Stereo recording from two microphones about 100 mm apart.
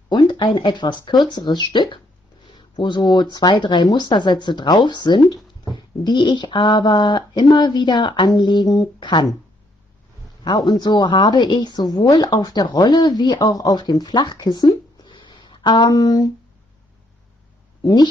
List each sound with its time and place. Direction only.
0.1 s a woman's voice: 50° left (ahead or behind)
10.4 s a woman's voice: 45° left (ahead or behind)